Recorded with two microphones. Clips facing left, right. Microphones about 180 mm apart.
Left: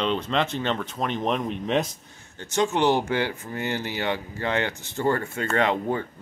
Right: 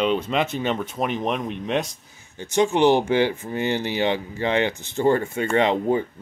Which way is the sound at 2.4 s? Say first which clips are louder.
Right 4 dB; 15° right (ahead or behind).